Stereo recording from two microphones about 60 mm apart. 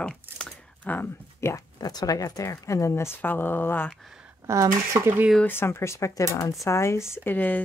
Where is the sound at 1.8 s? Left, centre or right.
Left.